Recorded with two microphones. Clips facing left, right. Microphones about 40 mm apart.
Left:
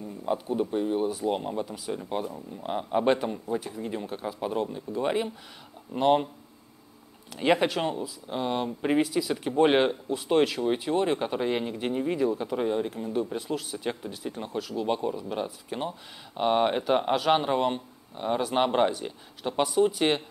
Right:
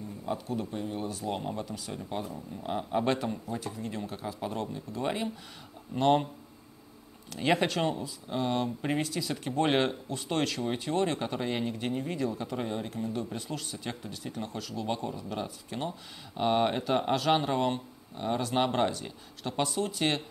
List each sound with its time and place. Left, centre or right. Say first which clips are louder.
0.3 s speech: left 6 dB; left; by 6.2 s centre
7.3 s speech: left 3 dB; centre